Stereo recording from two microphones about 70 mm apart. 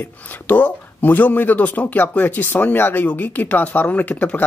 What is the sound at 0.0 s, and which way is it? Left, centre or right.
Speech, left.